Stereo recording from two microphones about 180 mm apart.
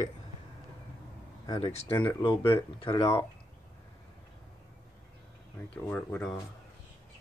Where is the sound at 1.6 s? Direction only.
35° left (ahead or behind).